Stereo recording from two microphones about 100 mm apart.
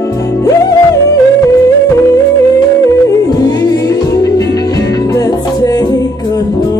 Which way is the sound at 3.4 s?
40° left (ahead or behind).